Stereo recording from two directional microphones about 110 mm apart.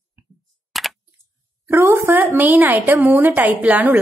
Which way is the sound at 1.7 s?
25° right (ahead or behind).